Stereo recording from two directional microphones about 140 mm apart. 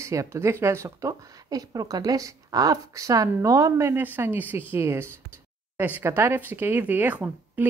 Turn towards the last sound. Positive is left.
turn(degrees=-10)  # may be behind; listen again after turning